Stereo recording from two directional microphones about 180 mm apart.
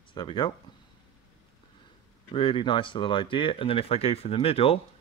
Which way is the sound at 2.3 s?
30° left (ahead or behind).